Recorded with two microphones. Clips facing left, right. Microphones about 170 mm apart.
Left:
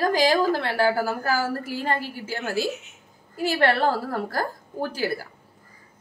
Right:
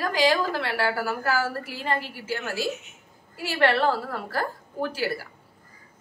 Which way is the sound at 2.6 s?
Centre (ahead or behind).